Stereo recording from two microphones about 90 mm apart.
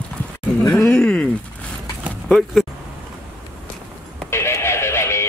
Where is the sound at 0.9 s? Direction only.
15° left (ahead or behind).